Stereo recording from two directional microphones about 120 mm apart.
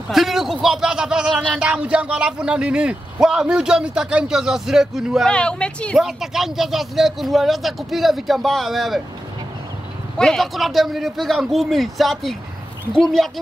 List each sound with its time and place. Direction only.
0.1 s a man's voice: centre (ahead or behind)
5.3 s a woman's voice: 10° left (ahead or behind)
5.9 s a man's voice: 5° right (ahead or behind)
10.1 s a man's voice: 5° left (ahead or behind)